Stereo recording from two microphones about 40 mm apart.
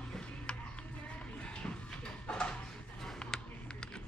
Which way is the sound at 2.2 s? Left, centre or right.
Left.